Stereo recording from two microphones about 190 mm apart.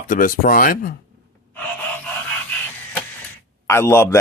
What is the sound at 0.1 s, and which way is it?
Speech, 45° left (ahead or behind).